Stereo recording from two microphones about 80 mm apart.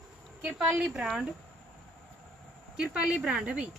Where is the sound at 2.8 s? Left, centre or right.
Centre.